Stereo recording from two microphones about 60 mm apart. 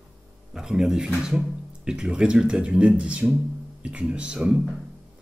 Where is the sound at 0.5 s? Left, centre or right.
Centre.